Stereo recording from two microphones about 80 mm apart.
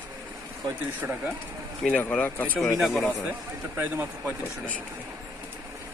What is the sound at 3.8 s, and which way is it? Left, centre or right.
Speech, right.